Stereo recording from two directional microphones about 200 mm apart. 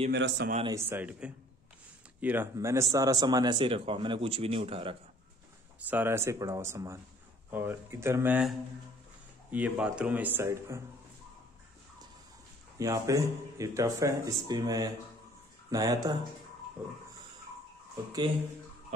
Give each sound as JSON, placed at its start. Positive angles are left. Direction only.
{"t": 0.1, "sound": "speech", "side_deg": -60}
{"t": 0.7, "sound": "speech", "side_deg": -10}
{"t": 5.9, "sound": "speech", "side_deg": -10}
{"t": 12.7, "sound": "speech", "side_deg": -15}
{"t": 16.8, "sound": "speech", "side_deg": -5}